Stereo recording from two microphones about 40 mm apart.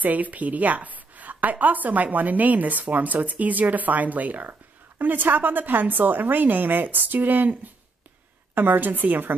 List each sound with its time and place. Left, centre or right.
0.0 s a woman's voice: right
4.5 s a woman's voice: right
8.5 s a woman's voice: right